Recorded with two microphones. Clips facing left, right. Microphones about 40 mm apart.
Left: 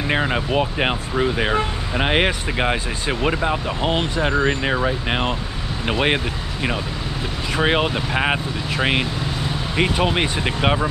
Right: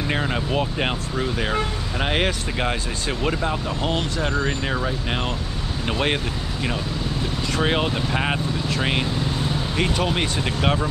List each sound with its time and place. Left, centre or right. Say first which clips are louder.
0.1 s speech: left 4 dB; left